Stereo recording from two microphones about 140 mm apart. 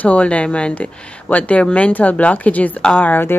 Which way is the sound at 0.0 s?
10° left (ahead or behind).